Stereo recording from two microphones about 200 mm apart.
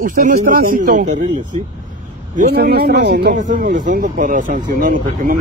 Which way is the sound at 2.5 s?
55° right (ahead or behind).